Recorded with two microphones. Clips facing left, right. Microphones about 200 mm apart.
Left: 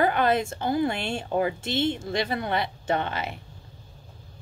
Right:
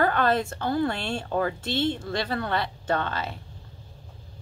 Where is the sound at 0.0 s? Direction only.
15° left (ahead or behind).